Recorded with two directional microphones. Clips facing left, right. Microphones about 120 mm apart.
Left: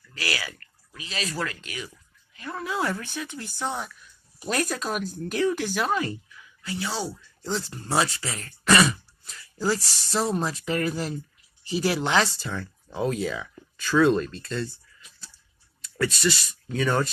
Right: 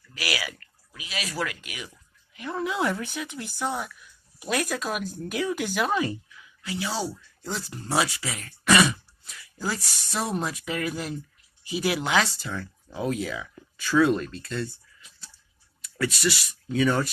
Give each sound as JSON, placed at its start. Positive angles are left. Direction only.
{"t": 0.1, "sound": "speech", "side_deg": -15}
{"t": 5.2, "sound": "speech", "side_deg": -15}
{"t": 9.6, "sound": "speech", "side_deg": 0}
{"t": 15.8, "sound": "speech", "side_deg": -5}